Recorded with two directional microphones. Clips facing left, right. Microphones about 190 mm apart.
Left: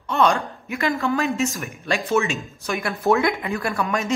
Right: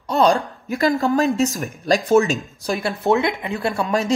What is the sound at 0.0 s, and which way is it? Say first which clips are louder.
A woman's voice: right 3 dB; 35° right (ahead or behind).